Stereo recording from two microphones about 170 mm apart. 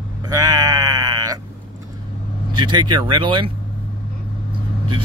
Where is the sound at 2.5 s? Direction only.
25° right (ahead or behind).